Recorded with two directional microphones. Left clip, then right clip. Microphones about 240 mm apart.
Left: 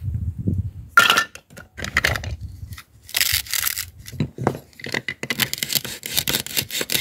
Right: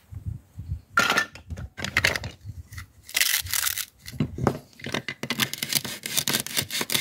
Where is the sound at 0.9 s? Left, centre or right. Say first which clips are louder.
Left 7 dB; left.